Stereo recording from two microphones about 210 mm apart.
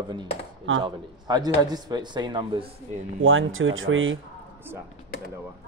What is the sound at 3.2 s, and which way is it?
Speech, 70° right (ahead or behind).